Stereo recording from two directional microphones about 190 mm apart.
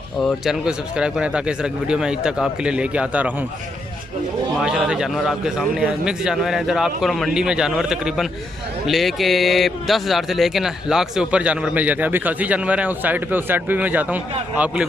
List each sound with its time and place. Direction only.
0.2 s a man's voice: 5° right (ahead or behind)
4.6 s a man's voice: 5° right (ahead or behind)